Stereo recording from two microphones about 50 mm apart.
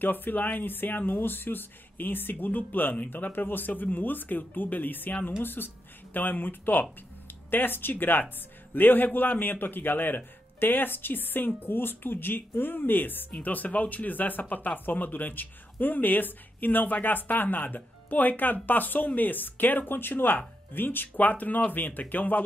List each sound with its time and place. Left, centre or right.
0.0 s speech: left